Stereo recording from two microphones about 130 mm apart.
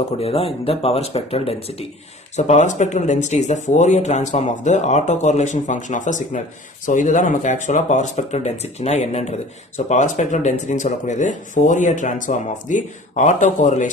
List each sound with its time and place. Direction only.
0.2 s speech: 50° left (ahead or behind)
2.3 s speech: 65° left (ahead or behind)
9.8 s speech: 65° left (ahead or behind)